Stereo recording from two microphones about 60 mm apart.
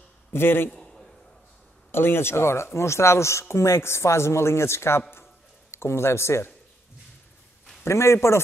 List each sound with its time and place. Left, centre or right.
0.3 s a man's voice: left
0.7 s a sound: centre
1.9 s speech: left
7.8 s speech: left